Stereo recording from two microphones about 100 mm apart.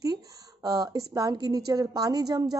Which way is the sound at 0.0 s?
40° right (ahead or behind).